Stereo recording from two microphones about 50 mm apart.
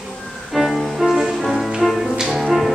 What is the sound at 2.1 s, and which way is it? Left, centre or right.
Music, centre.